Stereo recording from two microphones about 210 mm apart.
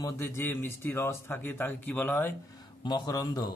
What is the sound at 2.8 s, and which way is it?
Speech, 20° left (ahead or behind).